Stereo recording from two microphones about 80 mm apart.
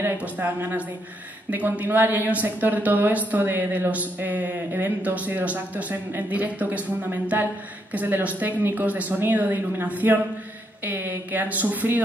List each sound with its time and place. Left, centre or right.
0.2 s speech: right